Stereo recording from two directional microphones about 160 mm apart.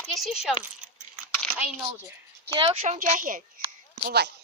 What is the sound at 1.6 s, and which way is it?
Speech, 10° right (ahead or behind).